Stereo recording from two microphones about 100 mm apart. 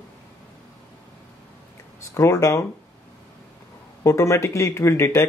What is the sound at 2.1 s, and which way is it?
Speech, 30° left (ahead or behind).